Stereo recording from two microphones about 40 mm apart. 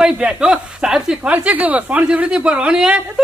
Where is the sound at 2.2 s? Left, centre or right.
Right.